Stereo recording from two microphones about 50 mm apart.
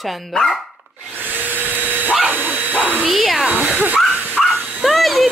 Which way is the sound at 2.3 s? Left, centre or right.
Right.